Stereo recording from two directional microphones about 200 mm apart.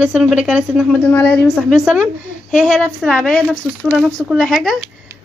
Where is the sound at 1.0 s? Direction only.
10° left (ahead or behind).